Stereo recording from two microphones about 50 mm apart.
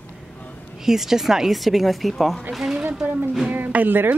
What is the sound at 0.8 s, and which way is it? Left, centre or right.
A woman's voice, centre.